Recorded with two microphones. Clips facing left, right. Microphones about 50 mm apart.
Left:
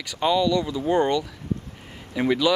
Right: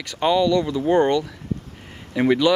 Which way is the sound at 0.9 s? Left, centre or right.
Right.